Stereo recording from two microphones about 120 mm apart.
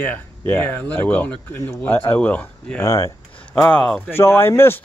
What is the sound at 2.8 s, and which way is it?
Speech, 30° left (ahead or behind).